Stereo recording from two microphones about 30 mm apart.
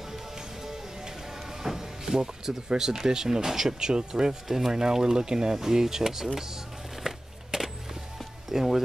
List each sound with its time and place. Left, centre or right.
0.1 s music: centre
2.8 s speech: right
4.5 s speech: centre